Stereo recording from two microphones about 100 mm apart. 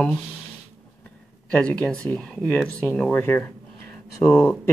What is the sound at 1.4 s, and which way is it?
Speech, 10° left (ahead or behind).